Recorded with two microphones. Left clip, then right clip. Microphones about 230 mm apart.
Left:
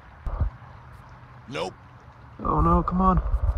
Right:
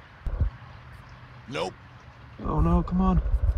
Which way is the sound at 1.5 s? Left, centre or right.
Centre.